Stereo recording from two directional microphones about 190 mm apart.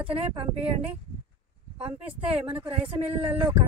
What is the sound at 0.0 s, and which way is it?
Speech, 30° right (ahead or behind).